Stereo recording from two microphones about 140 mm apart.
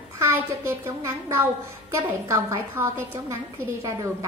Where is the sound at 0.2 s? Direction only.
20° right (ahead or behind).